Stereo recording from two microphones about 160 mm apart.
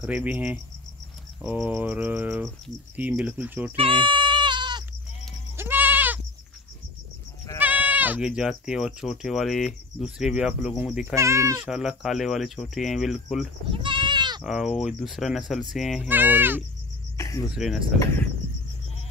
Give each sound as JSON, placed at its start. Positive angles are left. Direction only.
{"t": 0.0, "sound": "a sound", "side_deg": -10}
{"t": 3.7, "sound": "bleat", "side_deg": -35}
{"t": 5.6, "sound": "goat", "side_deg": -10}
{"t": 7.6, "sound": "speech", "side_deg": -10}
{"t": 11.1, "sound": "a sound", "side_deg": -20}
{"t": 11.6, "sound": "speech", "side_deg": -5}
{"t": 13.7, "sound": "goat", "side_deg": -30}
{"t": 14.4, "sound": "speech", "side_deg": 0}
{"t": 16.1, "sound": "a sound", "side_deg": -10}
{"t": 17.2, "sound": "cricket", "side_deg": 20}
{"t": 17.6, "sound": "speech", "side_deg": -5}